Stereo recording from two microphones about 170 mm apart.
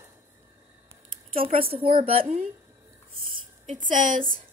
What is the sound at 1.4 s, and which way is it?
A woman's voice, 35° right (ahead or behind).